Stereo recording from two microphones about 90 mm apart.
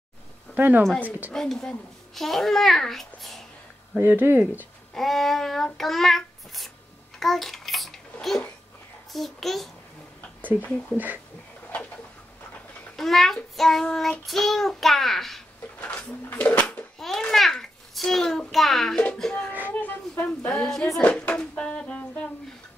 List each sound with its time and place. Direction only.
0.6 s speech: 20° right (ahead or behind)
1.3 s a child's voice: 5° left (ahead or behind)
3.9 s speech: 20° right (ahead or behind)
4.9 s a child's voice: centre (ahead or behind)
7.2 s babbling: centre (ahead or behind)
9.1 s a child's voice: centre (ahead or behind)
12.9 s a child's voice: centre (ahead or behind)
15.8 s speech: 15° left (ahead or behind)
17.0 s a child's voice: 5° left (ahead or behind)
19.7 s speech: 20° left (ahead or behind)